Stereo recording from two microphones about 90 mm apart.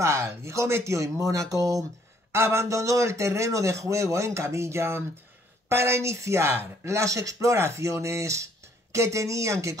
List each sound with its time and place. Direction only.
0.0 s speech: 30° right (ahead or behind)
2.3 s speech: 30° right (ahead or behind)